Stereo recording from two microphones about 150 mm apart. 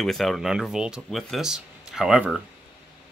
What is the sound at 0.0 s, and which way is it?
Speech, centre (ahead or behind).